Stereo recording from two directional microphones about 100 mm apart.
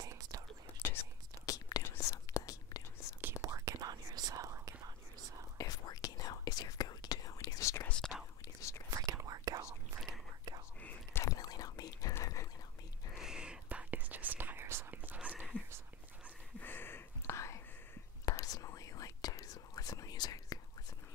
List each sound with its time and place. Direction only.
0.0 s whispering: 40° right (ahead or behind)
1.4 s whispering: 35° left (ahead or behind)
3.4 s whispering: 35° right (ahead or behind)
5.6 s whispering: 40° left (ahead or behind)
8.9 s whispering: 35° right (ahead or behind)
10.8 s whispering: 15° left (ahead or behind)
11.2 s whispering: 40° left (ahead or behind)
12.1 s whispering: 30° left (ahead or behind)
13.2 s whispering: 10° right (ahead or behind)
15.1 s whispering: 10° right (ahead or behind)
16.6 s whispering: 20° left (ahead or behind); by 20.5 s 40° left (ahead or behind)